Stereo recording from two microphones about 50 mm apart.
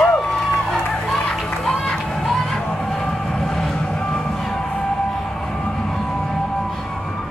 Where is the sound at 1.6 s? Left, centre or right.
Centre.